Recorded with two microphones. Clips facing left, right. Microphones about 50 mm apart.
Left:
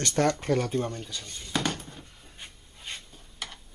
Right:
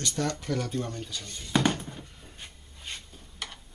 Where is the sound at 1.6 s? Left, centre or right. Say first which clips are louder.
Right 4 dB; centre.